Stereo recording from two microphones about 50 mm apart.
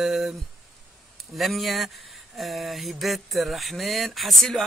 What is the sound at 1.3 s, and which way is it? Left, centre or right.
Speech, centre.